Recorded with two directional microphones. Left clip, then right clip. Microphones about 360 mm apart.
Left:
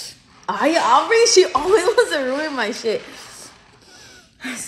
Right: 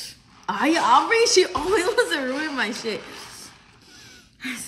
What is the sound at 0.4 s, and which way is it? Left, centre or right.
A woman's voice, centre.